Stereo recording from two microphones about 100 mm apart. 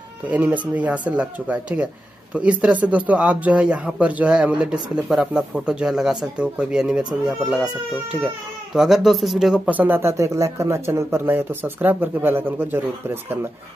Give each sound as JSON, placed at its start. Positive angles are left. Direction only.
{"t": 0.3, "sound": "speech", "side_deg": -15}
{"t": 9.7, "sound": "speech", "side_deg": -20}